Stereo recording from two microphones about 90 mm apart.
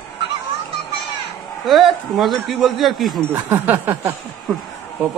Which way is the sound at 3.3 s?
25° right (ahead or behind).